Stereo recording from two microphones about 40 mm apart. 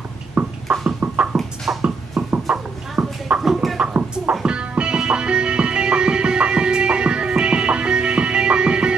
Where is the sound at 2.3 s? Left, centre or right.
Right.